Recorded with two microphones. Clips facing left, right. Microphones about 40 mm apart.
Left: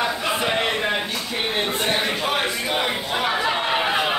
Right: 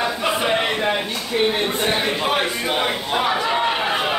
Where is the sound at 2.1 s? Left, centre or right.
Centre.